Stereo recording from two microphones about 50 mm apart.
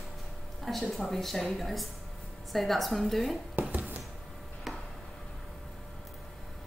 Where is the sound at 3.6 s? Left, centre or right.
Right.